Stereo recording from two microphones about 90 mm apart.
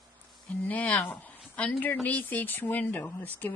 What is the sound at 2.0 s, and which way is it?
Speech, 20° left (ahead or behind).